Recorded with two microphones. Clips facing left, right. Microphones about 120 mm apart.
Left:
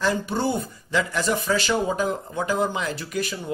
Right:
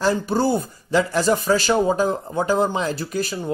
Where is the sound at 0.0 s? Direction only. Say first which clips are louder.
Right 4 dB; 35° right (ahead or behind).